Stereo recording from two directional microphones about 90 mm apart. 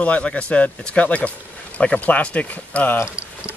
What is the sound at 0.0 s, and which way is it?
Speech, 15° left (ahead or behind).